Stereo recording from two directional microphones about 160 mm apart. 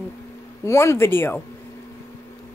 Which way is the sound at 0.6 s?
15° left (ahead or behind).